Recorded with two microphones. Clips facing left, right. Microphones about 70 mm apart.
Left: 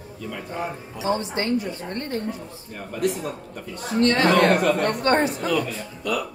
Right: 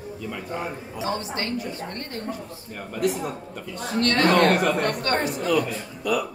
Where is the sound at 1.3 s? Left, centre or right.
Left.